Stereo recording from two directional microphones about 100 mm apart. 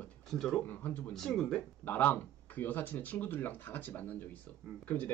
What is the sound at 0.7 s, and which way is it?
Speech, 20° left (ahead or behind).